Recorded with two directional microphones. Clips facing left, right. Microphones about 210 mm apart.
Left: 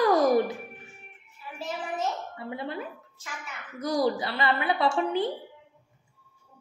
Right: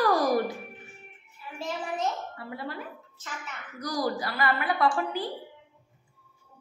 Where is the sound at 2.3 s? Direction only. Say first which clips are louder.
Left 3 dB; 20° left (ahead or behind).